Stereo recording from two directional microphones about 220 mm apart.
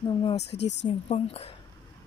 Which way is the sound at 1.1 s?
25° left (ahead or behind).